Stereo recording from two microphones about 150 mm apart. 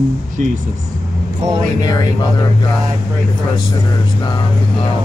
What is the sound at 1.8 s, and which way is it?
Speech, 25° left (ahead or behind).